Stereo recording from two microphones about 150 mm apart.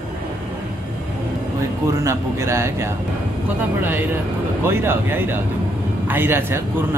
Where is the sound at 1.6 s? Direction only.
20° right (ahead or behind).